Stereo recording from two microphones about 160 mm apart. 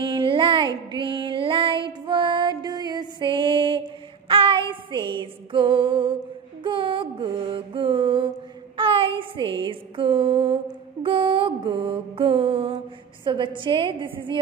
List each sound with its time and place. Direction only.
0.0 s music: 30° right (ahead or behind)
6.6 s mantra: 30° right (ahead or behind)
8.7 s a sound: 35° right (ahead or behind)
13.2 s a woman's voice: 30° right (ahead or behind)